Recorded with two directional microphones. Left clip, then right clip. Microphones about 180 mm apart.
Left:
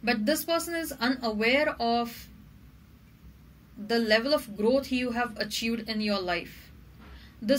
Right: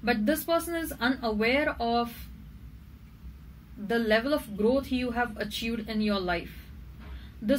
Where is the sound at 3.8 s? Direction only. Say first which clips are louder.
Left 1 dB; 50° left (ahead or behind).